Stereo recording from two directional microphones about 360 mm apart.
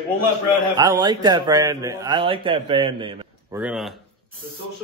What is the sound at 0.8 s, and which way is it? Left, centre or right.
A man's voice, centre.